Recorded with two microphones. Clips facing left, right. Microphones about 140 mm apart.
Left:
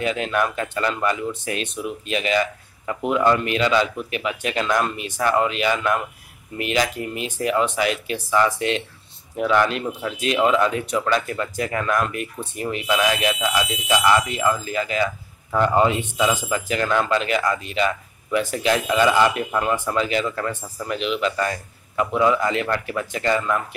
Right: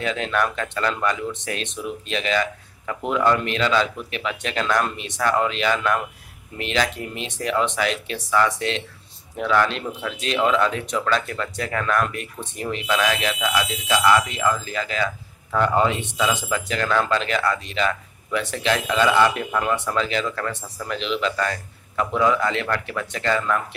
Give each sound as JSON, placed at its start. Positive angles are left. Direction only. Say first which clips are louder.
{"t": 0.0, "sound": "speech", "louder": "left 1 dB", "side_deg": 10}